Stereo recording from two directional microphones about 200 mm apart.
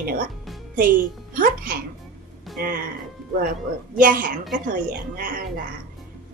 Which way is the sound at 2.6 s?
50° right (ahead or behind).